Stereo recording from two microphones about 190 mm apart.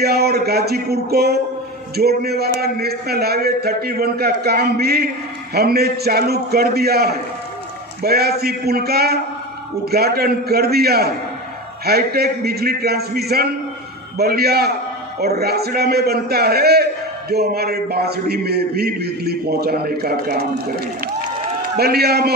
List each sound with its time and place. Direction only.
0.0 s a man's voice: 55° right (ahead or behind)